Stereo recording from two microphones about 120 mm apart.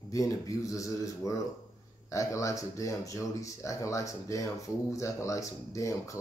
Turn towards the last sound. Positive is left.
turn(degrees=25)  # may be behind; listen again after turning